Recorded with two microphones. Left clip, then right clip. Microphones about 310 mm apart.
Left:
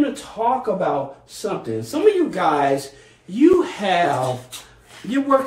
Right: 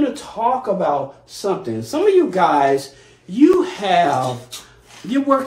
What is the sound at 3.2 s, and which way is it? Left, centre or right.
Speech, centre.